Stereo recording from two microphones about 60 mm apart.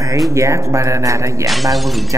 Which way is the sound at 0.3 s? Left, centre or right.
Right.